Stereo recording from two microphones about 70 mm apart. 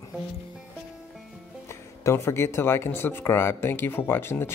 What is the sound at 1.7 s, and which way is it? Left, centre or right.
Speech, left.